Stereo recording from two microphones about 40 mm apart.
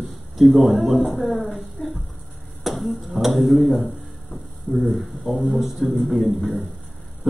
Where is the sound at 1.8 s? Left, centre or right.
Left.